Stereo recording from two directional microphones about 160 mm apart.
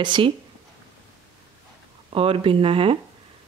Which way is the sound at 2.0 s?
35° right (ahead or behind).